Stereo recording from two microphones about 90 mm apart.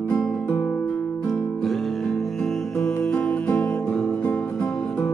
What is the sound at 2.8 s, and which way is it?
Music, 10° left (ahead or behind).